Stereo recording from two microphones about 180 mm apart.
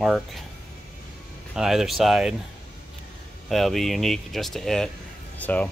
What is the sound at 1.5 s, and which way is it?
Speech, 5° right (ahead or behind).